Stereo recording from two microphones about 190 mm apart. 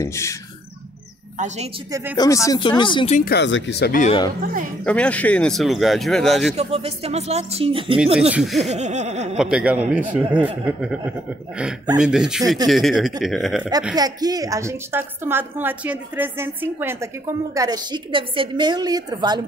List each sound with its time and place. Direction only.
0.0 s speech: 15° left (ahead or behind)
2.1 s speech: 15° left (ahead or behind)
3.2 s speech: 55° left (ahead or behind)
4.8 s speech: 5° left (ahead or behind)
6.5 s speech: 30° right (ahead or behind)
8.3 s speech: centre (ahead or behind)
8.6 s speech: 35° right (ahead or behind)
9.4 s a woman's voice: 5° right (ahead or behind)
13.9 s a woman's voice: 20° right (ahead or behind)